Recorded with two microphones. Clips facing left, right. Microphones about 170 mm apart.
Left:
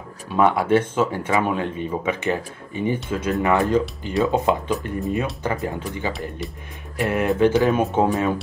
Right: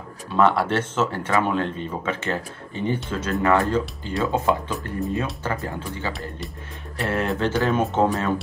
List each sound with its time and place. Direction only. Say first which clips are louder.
0.3 s speech: left 2 dB; 15° left (ahead or behind)